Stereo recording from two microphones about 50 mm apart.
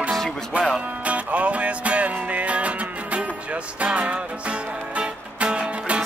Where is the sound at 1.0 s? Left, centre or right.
Right.